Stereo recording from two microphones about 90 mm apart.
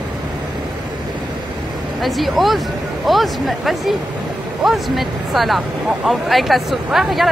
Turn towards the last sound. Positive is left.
turn(degrees=0)  # may be behind; listen again after turning